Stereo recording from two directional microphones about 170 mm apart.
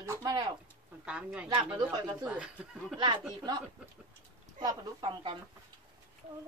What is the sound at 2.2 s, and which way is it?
Speech, 5° right (ahead or behind).